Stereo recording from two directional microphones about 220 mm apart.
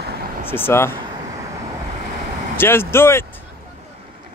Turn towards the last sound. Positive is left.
turn(degrees=10)  # may be behind; listen again after turning